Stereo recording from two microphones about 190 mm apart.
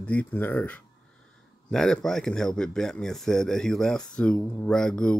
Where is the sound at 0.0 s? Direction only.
5° left (ahead or behind).